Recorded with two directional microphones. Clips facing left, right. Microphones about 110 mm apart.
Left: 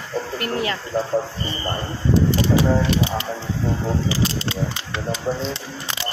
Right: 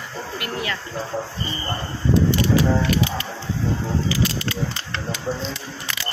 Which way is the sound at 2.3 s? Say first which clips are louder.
Left 1 dB; 25° left (ahead or behind).